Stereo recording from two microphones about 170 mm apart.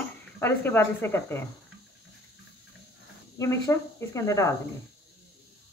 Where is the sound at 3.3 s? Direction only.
20° left (ahead or behind).